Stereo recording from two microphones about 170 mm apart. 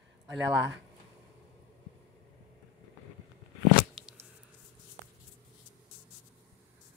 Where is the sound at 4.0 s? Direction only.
5° right (ahead or behind).